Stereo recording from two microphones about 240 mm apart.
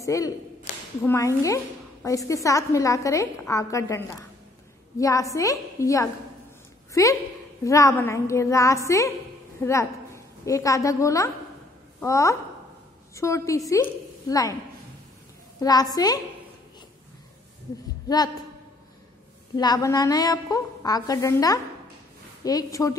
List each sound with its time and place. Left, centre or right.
0.0 s speech: centre
0.7 s a sound: left
1.0 s a woman's voice: centre
15.6 s a woman's voice: centre
18.0 s a man's voice: centre
19.5 s a woman's voice: centre